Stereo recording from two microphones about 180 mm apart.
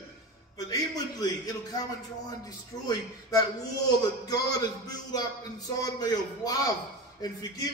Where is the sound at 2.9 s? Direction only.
20° left (ahead or behind).